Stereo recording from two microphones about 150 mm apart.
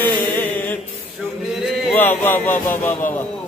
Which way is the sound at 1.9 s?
10° left (ahead or behind).